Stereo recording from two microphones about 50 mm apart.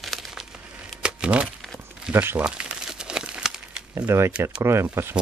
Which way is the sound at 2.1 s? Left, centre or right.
Right.